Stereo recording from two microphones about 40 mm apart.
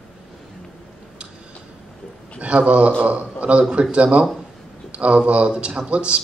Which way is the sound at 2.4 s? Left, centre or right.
Right.